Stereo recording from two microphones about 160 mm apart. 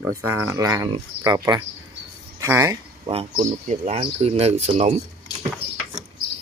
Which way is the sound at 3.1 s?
40° right (ahead or behind).